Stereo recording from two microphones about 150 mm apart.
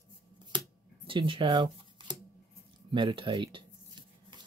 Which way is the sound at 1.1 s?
35° right (ahead or behind).